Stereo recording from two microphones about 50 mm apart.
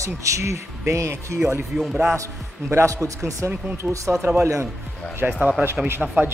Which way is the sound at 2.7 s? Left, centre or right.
Right.